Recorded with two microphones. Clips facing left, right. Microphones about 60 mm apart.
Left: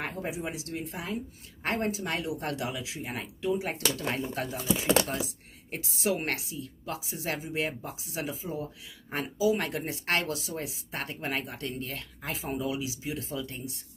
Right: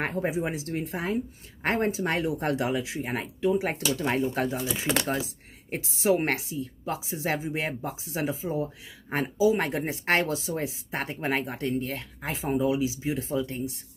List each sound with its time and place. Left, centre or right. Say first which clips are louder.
0.0 s a woman's voice: right 6 dB; right